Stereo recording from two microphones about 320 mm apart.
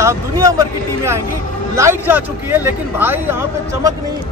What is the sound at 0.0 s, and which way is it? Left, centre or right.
A man's voice, centre.